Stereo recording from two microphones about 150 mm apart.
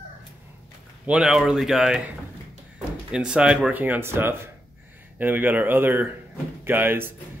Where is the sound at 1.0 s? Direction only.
5° right (ahead or behind).